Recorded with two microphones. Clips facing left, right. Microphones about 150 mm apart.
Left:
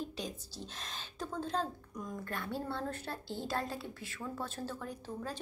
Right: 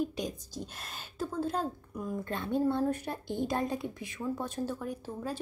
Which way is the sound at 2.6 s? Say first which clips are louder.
Right 10 dB; 10° right (ahead or behind).